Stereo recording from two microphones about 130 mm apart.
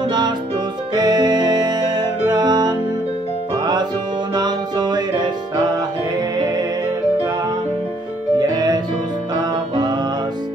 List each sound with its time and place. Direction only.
0.9 s music: 30° right (ahead or behind)
8.4 s music: 30° right (ahead or behind)